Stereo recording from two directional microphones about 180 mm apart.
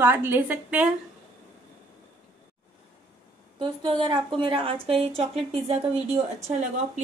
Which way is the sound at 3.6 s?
25° right (ahead or behind).